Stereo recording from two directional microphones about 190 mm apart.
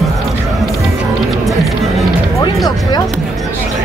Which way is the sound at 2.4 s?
20° left (ahead or behind).